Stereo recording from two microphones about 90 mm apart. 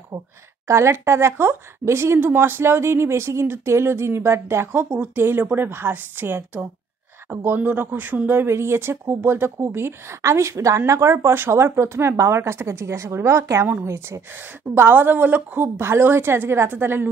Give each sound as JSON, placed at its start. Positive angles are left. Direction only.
{"t": 0.7, "sound": "speech", "side_deg": -30}